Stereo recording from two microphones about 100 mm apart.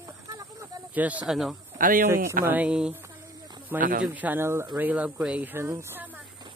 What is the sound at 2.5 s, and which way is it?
Speech, 10° right (ahead or behind).